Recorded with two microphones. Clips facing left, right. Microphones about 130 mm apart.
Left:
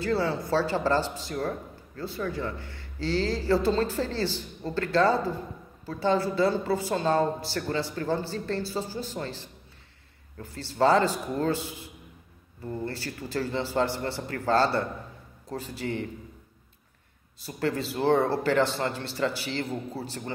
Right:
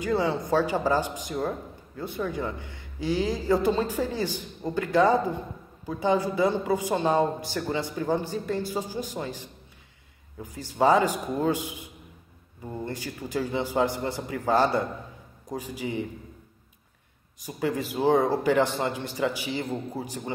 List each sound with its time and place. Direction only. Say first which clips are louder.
0.0 s a woman's voice: right 1 dB; 15° right (ahead or behind)
17.4 s a woman's voice: right 1 dB; 10° right (ahead or behind)